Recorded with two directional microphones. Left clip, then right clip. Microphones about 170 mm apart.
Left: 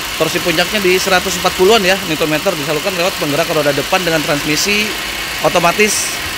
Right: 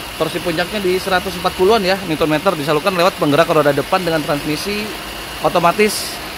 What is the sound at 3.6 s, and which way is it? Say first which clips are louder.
Speech: left 1 dB; centre (ahead or behind).